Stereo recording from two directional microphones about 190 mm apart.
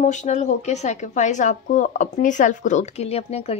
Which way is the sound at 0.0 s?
40° left (ahead or behind).